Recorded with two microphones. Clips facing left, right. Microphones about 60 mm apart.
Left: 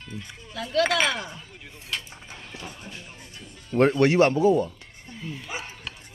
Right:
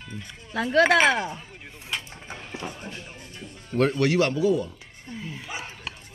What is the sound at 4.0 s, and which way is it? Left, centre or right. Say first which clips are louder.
Speech: left 4 dB; left.